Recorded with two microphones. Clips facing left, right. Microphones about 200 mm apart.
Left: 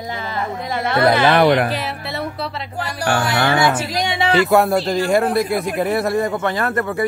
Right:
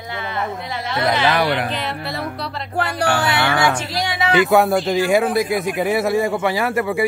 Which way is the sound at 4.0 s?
25° left (ahead or behind).